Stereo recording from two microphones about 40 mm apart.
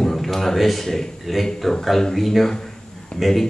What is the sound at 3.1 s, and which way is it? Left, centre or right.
Speech, centre.